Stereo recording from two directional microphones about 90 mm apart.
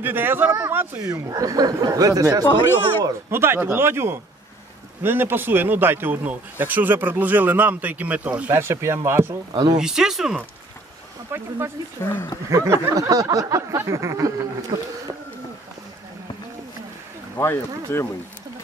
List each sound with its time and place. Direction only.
0.0 s speech: 25° right (ahead or behind)
1.0 s speech: 45° right (ahead or behind)
3.3 s speech: 25° right (ahead or behind)
8.5 s speech: 30° right (ahead or behind)
9.5 s speech: 55° right (ahead or behind)
9.8 s speech: 5° right (ahead or behind)
11.3 s speech: 25° right (ahead or behind)
12.0 s speech: 25° left (ahead or behind)
12.4 s a sound: 35° right (ahead or behind)
17.4 s speech: 25° left (ahead or behind)